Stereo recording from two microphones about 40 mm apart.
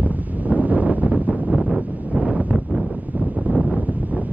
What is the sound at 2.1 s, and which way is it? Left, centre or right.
Wind noise, right.